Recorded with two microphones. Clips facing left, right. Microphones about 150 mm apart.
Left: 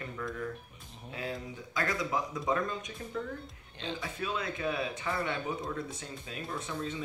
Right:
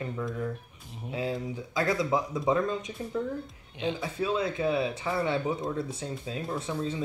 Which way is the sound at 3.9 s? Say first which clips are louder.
Right 5 dB; 25° right (ahead or behind).